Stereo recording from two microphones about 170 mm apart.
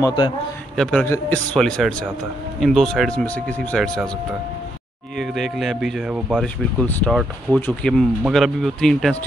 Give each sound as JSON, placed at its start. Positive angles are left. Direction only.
{"t": 0.0, "sound": "a man's voice", "side_deg": 25}
{"t": 0.7, "sound": "speech", "side_deg": 0}
{"t": 5.1, "sound": "speech", "side_deg": 0}